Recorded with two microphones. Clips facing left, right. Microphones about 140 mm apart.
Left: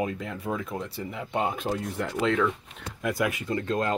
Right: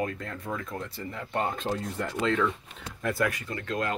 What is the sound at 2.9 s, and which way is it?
Speech, 15° left (ahead or behind).